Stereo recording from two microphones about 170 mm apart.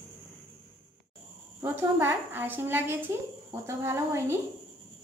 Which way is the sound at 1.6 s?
15° right (ahead or behind).